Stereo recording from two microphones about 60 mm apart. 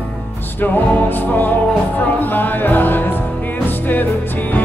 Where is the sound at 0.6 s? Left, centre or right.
Left.